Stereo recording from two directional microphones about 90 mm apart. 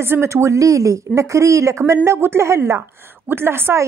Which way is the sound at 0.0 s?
30° right (ahead or behind).